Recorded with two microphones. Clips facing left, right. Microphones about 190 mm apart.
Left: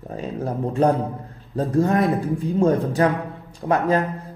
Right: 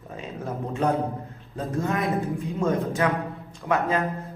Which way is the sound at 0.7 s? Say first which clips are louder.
Left 4 dB; 35° left (ahead or behind).